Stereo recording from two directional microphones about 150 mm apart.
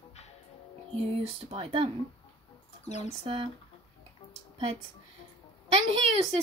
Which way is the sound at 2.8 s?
50° left (ahead or behind).